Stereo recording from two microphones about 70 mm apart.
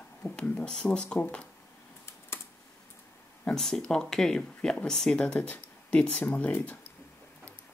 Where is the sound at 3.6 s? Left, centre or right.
Centre; by 6.7 s left.